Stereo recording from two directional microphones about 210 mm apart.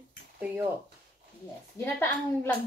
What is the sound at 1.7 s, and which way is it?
Speech, 10° left (ahead or behind).